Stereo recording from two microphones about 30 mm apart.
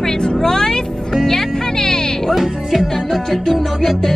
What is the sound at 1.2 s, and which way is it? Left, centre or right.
Music, centre.